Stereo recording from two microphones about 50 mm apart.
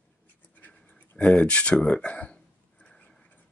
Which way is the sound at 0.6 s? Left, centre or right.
Left.